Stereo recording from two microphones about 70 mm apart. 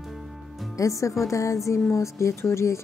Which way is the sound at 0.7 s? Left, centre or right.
Left.